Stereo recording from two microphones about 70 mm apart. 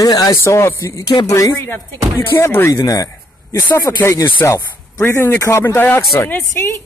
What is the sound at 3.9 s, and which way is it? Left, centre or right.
A man's voice, left.